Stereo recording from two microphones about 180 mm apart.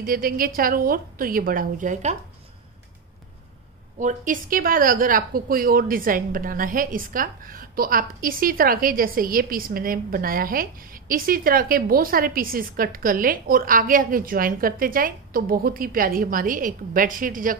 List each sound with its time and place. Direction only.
0.0 s a woman's voice: 55° right (ahead or behind)
4.0 s a woman's voice: 45° right (ahead or behind)